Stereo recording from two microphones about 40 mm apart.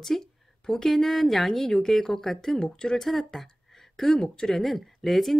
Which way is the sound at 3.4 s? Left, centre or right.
Centre.